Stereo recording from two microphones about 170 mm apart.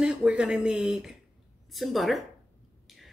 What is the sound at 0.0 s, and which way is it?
Speech, 5° right (ahead or behind).